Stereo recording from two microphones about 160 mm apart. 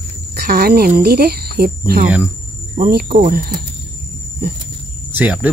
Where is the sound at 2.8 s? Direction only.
55° right (ahead or behind).